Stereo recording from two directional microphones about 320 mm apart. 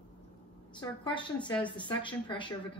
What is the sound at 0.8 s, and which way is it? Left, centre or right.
Speech, centre.